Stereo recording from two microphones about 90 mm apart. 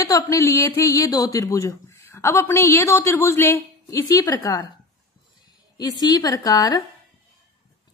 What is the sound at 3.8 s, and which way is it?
Speech, 40° left (ahead or behind).